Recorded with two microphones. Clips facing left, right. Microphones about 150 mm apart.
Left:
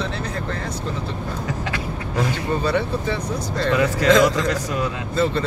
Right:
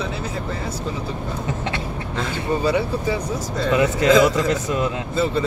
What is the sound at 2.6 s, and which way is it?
A man's voice, 10° right (ahead or behind).